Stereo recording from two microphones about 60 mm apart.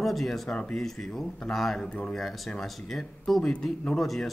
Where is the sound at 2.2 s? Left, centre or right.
Centre.